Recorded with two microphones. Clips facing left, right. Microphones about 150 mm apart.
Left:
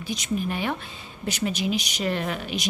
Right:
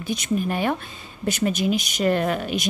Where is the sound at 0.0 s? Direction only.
50° right (ahead or behind).